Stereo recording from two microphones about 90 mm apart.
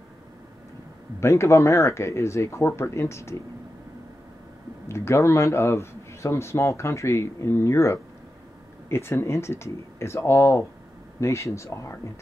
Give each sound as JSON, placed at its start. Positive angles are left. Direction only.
{"t": 1.2, "sound": "a man's voice", "side_deg": 30}
{"t": 4.8, "sound": "a man's voice", "side_deg": 30}